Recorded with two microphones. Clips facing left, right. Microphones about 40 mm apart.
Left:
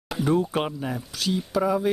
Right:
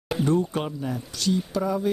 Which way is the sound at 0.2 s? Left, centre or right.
Centre.